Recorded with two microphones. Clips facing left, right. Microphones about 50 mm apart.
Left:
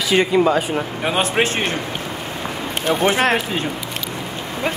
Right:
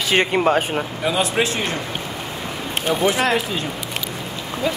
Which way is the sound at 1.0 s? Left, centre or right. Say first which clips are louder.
Left 1 dB; left.